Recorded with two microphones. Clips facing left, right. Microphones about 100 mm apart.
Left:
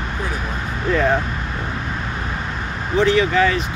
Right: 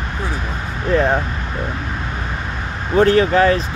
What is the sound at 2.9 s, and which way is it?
Speech, 45° right (ahead or behind).